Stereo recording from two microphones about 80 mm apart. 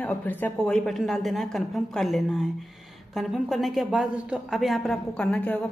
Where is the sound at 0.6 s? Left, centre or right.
Centre.